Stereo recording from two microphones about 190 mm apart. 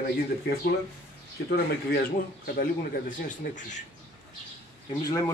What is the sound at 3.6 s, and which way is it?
Speech, 40° left (ahead or behind).